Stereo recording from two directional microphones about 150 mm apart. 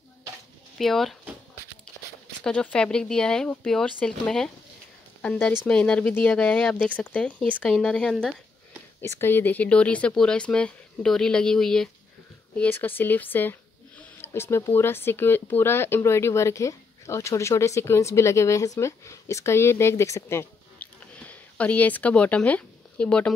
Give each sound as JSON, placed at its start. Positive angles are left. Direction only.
{"t": 0.7, "sound": "speech", "side_deg": 0}
{"t": 2.4, "sound": "speech", "side_deg": 5}
{"t": 9.0, "sound": "speech", "side_deg": 15}